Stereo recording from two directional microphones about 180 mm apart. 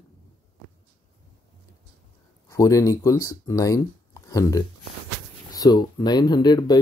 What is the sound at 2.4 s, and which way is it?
Speech, 20° left (ahead or behind).